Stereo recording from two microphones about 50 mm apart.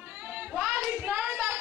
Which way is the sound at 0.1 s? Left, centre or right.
Right.